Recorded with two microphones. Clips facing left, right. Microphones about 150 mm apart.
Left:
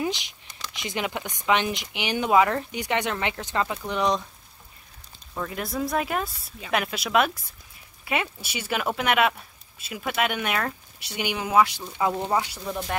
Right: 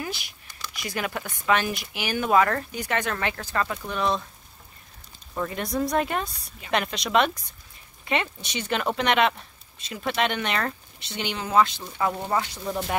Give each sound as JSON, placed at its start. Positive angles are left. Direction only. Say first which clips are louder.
{"t": 0.0, "sound": "speech", "louder": "left 5 dB", "side_deg": 20}
{"t": 5.3, "sound": "speech", "louder": "right 2 dB", "side_deg": 0}